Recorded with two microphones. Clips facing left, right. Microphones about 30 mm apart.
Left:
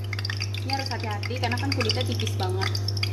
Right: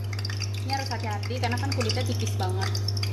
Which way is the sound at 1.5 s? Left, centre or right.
Left.